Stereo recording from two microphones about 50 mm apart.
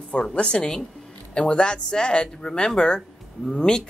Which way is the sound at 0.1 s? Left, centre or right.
Centre.